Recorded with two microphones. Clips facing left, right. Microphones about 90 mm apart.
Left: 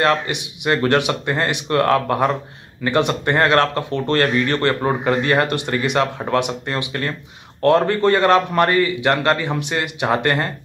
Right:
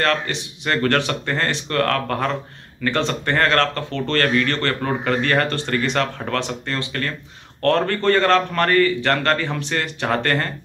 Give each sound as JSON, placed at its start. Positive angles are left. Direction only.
{"t": 0.0, "sound": "speech", "side_deg": 15}